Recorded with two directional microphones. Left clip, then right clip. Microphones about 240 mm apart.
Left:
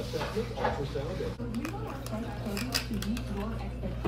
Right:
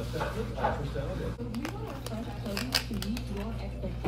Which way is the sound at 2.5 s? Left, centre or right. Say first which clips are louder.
Right 3 dB; left.